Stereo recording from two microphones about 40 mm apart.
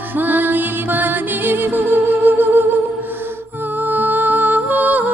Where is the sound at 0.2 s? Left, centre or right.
Right.